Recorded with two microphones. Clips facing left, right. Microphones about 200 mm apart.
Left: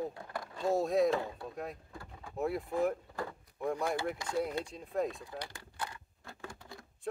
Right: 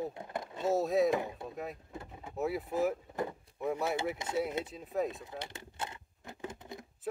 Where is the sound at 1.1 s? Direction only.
15° right (ahead or behind).